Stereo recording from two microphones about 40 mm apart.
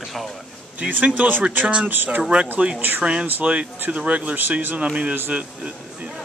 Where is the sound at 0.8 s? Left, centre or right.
Right.